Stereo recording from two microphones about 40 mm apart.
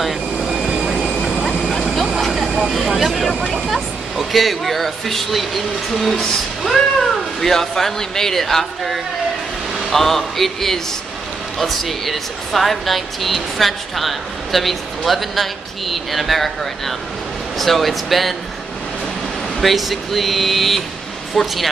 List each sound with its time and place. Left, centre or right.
0.7 s vehicle: right
1.6 s vehicle: centre
3.6 s a man's voice: centre
19.6 s speech: centre